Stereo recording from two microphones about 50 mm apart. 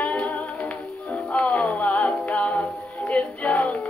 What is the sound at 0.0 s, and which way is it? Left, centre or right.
Music, left.